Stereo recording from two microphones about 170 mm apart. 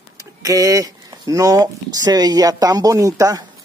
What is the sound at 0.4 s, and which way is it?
Speech, 20° right (ahead or behind).